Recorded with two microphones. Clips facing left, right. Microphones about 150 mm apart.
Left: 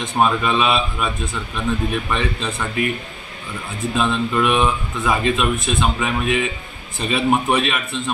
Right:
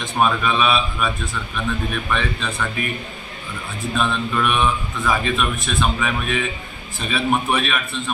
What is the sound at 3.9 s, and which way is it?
A man's voice, 25° left (ahead or behind).